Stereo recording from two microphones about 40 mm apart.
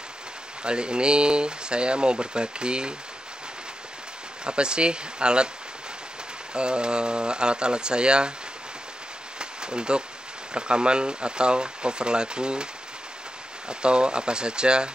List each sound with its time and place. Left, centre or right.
0.7 s speech: right
4.5 s speech: right
6.5 s speech: right
9.4 s a sound: right
10.5 s speech: right
13.7 s speech: right